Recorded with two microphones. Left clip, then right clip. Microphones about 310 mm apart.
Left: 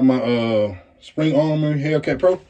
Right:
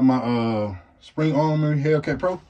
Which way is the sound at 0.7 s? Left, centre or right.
Right.